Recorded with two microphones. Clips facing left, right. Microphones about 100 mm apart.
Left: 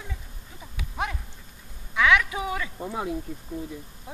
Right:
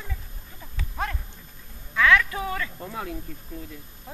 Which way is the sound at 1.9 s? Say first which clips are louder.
Right 1 dB; 10° left (ahead or behind).